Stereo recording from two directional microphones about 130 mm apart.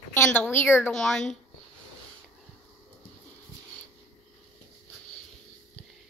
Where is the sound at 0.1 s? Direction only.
15° left (ahead or behind).